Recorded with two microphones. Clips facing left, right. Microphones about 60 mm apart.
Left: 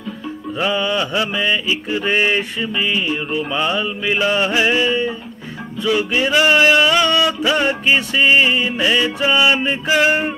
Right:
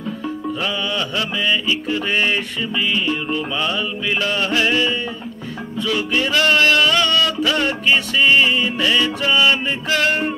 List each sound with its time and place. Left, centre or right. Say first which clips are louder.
0.6 s mantra: left 7 dB; centre